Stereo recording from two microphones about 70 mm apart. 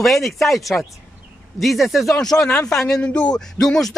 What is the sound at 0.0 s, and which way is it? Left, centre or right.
Speech, centre.